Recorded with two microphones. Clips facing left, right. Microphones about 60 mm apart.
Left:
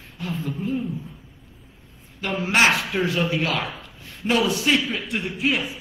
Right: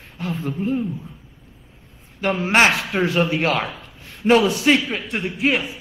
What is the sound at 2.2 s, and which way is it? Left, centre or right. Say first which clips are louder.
A man's voice: right 3 dB; right.